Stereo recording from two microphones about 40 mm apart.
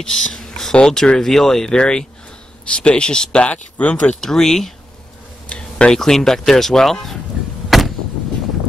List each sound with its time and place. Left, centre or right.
0.0 s a sound: centre
0.8 s speech: centre
4.2 s speech: centre
5.5 s a sound: left
5.9 s speech: centre
7.7 s artillery fire: centre